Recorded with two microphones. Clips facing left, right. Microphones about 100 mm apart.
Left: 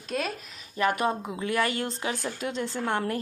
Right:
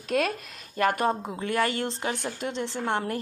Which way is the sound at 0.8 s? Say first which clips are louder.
Right 1 dB; 40° right (ahead or behind).